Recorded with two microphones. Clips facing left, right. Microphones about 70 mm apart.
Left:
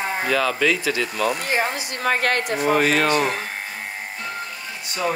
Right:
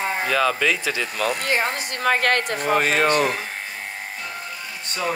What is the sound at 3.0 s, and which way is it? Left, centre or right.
Speech, centre.